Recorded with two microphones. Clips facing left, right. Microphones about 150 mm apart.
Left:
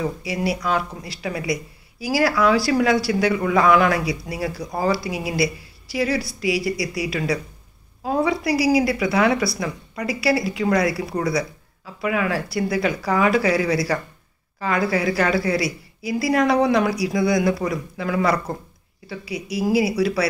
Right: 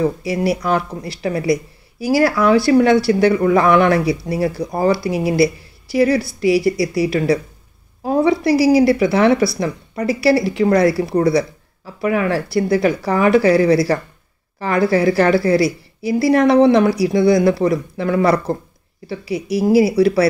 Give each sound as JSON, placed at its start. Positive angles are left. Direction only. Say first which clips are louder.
{"t": 1.0, "sound": "speech", "louder": "right 7 dB", "side_deg": -30}
{"t": 5.4, "sound": "a woman's voice", "louder": "right 7 dB", "side_deg": -55}
{"t": 6.4, "sound": "speech", "louder": "right 9 dB", "side_deg": -30}